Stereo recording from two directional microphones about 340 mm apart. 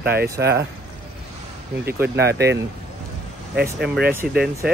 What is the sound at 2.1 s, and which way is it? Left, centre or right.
Speech, right.